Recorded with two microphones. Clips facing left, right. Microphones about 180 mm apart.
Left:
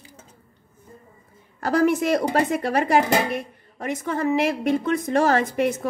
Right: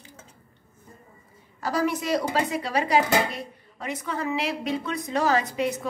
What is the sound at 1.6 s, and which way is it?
A woman's voice, 55° left (ahead or behind).